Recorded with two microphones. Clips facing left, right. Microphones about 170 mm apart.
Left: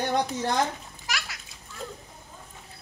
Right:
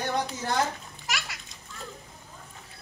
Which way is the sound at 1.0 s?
Centre (ahead or behind).